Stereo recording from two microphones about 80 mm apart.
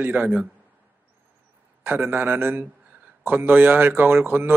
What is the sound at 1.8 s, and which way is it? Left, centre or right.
A man's voice, right.